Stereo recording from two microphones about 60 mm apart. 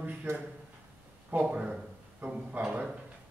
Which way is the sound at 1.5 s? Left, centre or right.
Centre.